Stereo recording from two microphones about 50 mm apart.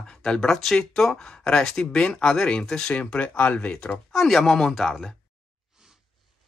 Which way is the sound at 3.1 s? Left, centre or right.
Left.